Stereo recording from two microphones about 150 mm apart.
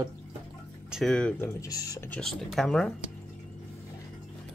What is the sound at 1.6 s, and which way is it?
Speech, 25° left (ahead or behind).